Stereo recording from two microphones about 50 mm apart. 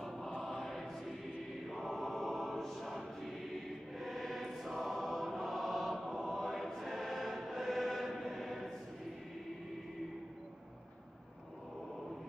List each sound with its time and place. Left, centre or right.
0.0 s choir: centre